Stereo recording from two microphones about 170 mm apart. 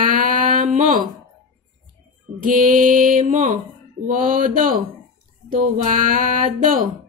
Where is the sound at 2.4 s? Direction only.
55° right (ahead or behind).